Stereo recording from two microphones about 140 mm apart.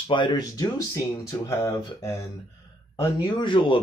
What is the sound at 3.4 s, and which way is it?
Speech, 35° left (ahead or behind).